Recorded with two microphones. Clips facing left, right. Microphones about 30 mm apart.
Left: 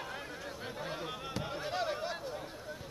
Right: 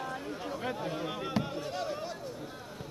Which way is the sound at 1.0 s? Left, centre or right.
Centre.